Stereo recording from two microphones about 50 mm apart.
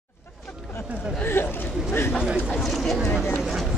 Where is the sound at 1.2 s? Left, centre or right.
Left.